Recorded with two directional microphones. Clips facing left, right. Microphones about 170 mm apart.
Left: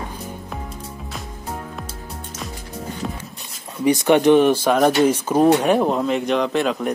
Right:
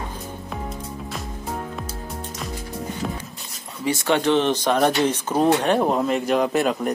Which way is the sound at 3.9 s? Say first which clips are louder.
Left 6 dB; 15° left (ahead or behind).